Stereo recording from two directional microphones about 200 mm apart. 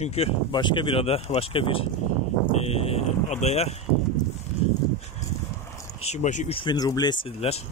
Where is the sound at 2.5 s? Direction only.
30° left (ahead or behind).